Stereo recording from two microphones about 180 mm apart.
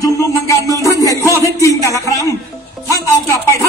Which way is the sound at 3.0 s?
15° left (ahead or behind).